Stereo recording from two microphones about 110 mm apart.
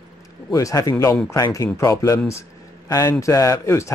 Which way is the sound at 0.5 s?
30° left (ahead or behind).